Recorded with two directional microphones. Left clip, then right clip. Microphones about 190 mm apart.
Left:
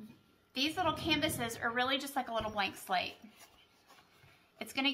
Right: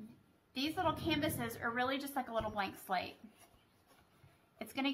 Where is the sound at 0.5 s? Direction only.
5° right (ahead or behind).